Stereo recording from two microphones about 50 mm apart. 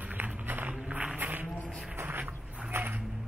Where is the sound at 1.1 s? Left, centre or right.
Right.